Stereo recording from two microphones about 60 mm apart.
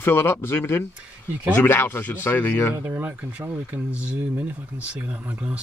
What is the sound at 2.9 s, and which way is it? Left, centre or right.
Speech, right.